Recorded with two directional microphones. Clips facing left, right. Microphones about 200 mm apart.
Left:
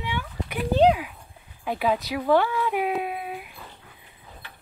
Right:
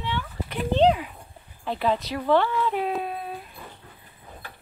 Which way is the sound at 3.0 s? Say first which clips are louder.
Left 1 dB; 10° left (ahead or behind).